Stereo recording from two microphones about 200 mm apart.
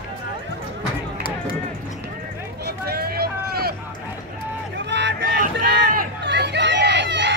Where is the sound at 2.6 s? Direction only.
50° right (ahead or behind).